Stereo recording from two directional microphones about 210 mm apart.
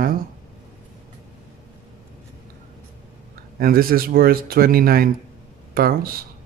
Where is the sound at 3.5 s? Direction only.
45° right (ahead or behind).